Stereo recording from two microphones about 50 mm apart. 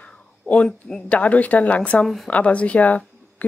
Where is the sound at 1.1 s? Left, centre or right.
Left.